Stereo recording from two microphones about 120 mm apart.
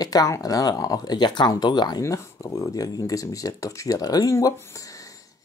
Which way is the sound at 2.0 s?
25° left (ahead or behind).